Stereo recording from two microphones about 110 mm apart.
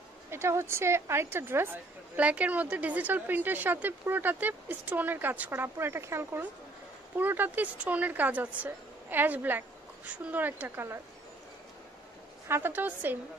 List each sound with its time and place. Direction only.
0.3 s a woman's voice: 25° right (ahead or behind)
12.4 s a woman's voice: 20° right (ahead or behind)